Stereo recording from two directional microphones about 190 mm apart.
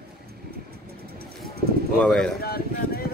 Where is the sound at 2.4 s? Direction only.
50° left (ahead or behind).